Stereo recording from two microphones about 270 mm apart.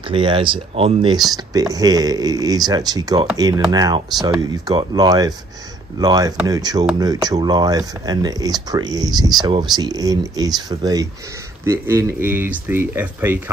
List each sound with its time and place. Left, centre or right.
0.1 s speech: centre